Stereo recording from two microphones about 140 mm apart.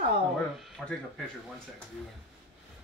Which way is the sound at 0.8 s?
Centre (ahead or behind).